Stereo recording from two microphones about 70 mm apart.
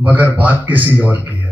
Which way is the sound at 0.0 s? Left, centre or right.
Right.